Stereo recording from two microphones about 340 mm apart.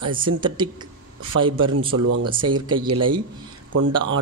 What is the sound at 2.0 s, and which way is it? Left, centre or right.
Speech, right.